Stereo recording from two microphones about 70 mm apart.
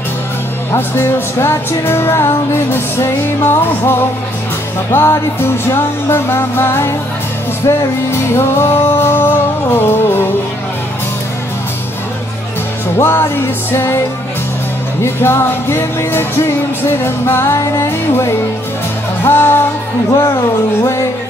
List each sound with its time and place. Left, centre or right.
0.7 s music: left
12.9 s music: left
15.0 s music: left
20.8 s music: left